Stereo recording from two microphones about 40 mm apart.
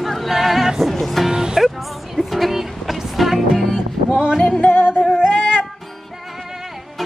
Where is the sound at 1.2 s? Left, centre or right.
Centre.